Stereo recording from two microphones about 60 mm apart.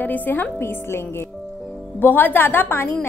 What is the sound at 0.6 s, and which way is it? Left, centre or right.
Speech, left.